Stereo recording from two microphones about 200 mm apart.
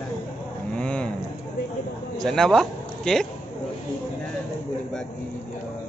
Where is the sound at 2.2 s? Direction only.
Centre (ahead or behind).